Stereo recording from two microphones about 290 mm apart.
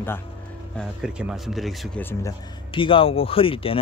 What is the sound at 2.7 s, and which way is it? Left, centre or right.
Speech, centre.